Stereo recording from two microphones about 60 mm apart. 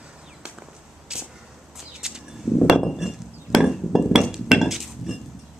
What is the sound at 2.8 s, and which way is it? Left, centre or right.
Chink, centre.